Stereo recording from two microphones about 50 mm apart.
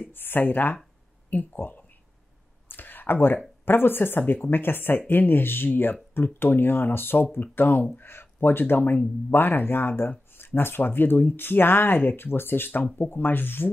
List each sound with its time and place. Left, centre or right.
0.1 s speech: left
2.7 s a sound: left
3.6 s speech: left